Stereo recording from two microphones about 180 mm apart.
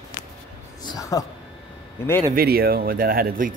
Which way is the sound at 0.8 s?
20° left (ahead or behind).